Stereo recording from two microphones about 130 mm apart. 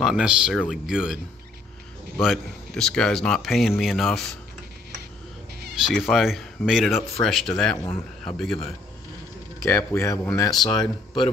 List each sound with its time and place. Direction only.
0.0 s speech: 5° right (ahead or behind)
5.9 s speech: centre (ahead or behind)
7.7 s speech: 45° left (ahead or behind)
8.4 s speech: 5° left (ahead or behind)
9.6 s speech: 25° left (ahead or behind)